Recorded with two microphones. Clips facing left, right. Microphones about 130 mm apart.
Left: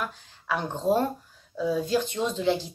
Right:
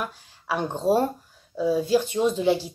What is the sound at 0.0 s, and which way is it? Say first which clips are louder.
Speech: right 1 dB; 10° right (ahead or behind).